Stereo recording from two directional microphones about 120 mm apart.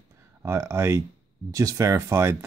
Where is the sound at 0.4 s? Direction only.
20° right (ahead or behind).